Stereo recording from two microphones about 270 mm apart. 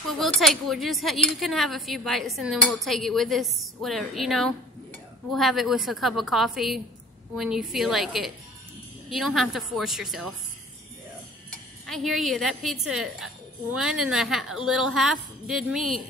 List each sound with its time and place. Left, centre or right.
0.2 s speech: centre
11.5 s speech: centre